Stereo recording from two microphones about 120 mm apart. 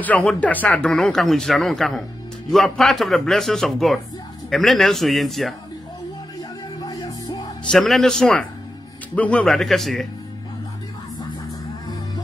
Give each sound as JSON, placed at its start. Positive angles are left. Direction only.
{"t": 0.0, "sound": "speech", "side_deg": 15}
{"t": 6.8, "sound": "music", "side_deg": 35}
{"t": 7.7, "sound": "speech", "side_deg": 0}